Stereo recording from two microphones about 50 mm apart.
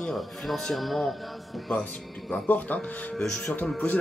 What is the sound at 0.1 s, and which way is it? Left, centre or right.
Speech, centre.